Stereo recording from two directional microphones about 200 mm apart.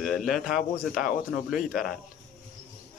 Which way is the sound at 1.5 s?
Centre (ahead or behind).